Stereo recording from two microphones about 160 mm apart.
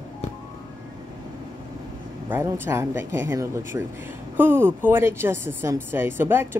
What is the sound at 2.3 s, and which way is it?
Speech, 15° right (ahead or behind).